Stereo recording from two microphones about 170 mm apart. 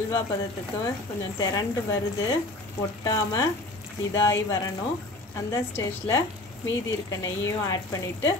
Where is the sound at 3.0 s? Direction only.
20° left (ahead or behind).